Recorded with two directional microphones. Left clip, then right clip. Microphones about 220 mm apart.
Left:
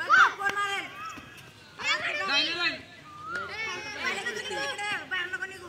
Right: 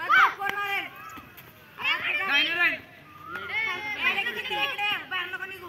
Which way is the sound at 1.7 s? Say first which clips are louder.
Right 2 dB; 35° right (ahead or behind).